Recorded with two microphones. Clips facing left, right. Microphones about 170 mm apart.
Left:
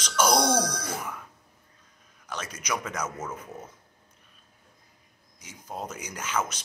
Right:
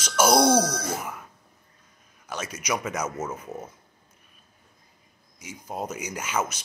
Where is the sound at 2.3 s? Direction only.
10° right (ahead or behind).